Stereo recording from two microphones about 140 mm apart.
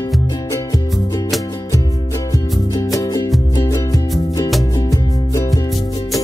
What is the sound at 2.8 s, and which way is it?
Music, 25° left (ahead or behind).